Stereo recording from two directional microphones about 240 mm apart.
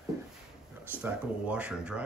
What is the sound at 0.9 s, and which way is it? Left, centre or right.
Speech, centre.